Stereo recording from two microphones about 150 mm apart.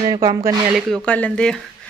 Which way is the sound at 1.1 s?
10° left (ahead or behind).